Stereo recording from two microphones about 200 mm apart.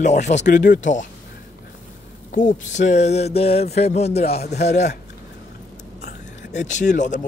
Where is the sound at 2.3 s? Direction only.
40° left (ahead or behind).